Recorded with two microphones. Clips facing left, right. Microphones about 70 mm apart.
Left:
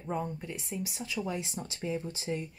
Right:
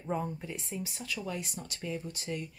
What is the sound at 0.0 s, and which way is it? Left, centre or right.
Speech, centre.